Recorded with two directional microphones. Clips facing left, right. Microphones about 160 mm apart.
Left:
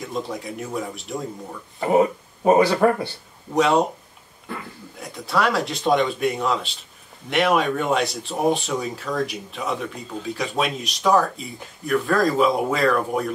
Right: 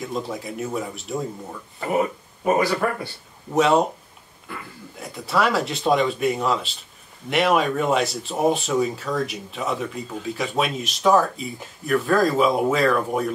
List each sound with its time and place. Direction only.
0.0 s speech: centre (ahead or behind)
1.8 s speech: 30° left (ahead or behind)
3.5 s speech: centre (ahead or behind)
5.0 s speech: centre (ahead or behind)